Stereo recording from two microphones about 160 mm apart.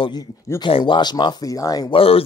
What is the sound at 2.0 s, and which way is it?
Speech, 35° left (ahead or behind).